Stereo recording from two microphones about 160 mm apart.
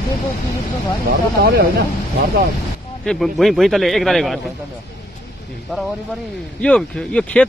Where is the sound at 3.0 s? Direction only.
Centre (ahead or behind).